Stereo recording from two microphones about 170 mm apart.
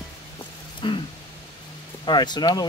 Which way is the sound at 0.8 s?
30° left (ahead or behind).